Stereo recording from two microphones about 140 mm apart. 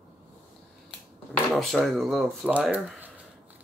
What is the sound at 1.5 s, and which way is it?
Speech, centre (ahead or behind).